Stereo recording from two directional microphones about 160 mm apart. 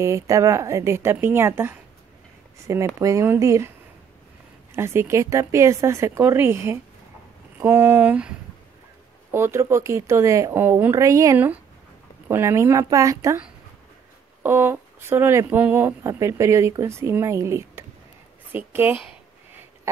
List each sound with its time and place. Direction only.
0.0 s speech: 20° right (ahead or behind)
4.7 s a woman's voice: 15° right (ahead or behind)